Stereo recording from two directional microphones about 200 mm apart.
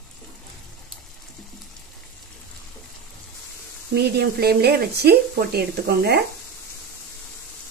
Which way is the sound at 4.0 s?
55° right (ahead or behind).